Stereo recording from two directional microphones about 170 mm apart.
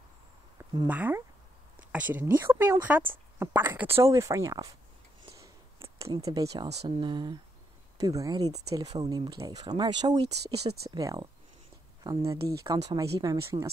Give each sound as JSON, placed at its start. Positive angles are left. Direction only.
{"t": 0.8, "sound": "speech", "side_deg": -10}
{"t": 6.2, "sound": "speech", "side_deg": -20}
{"t": 10.3, "sound": "speech", "side_deg": -70}
{"t": 11.0, "sound": "speech", "side_deg": -20}
{"t": 12.3, "sound": "speech", "side_deg": -20}